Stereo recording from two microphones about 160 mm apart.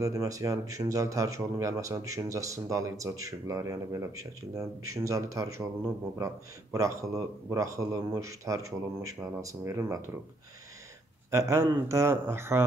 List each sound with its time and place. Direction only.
0.0 s speech: 20° right (ahead or behind)
11.2 s speech: 20° right (ahead or behind)